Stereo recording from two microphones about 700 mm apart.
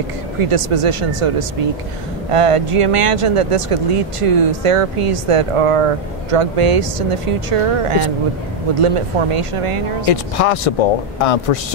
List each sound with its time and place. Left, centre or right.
0.5 s speech: right
10.0 s a man's voice: left